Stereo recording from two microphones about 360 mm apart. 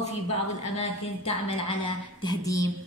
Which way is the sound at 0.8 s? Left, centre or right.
Centre.